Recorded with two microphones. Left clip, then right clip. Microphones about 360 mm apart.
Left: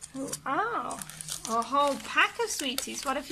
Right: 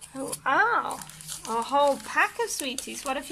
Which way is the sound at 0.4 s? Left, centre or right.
Right.